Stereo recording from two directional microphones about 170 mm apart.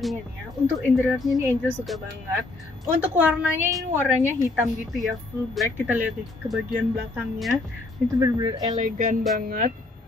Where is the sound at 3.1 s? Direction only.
10° right (ahead or behind).